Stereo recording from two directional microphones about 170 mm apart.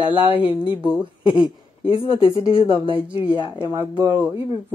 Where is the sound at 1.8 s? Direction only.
30° left (ahead or behind).